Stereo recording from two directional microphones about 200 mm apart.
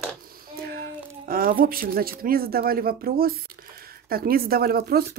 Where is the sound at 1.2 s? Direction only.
45° right (ahead or behind).